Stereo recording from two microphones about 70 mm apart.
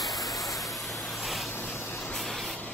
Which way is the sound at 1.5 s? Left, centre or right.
Left.